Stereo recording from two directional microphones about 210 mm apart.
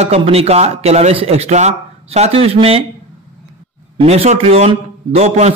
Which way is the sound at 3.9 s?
30° right (ahead or behind).